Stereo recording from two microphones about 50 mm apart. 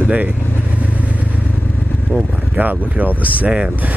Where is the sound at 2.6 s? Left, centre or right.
Right.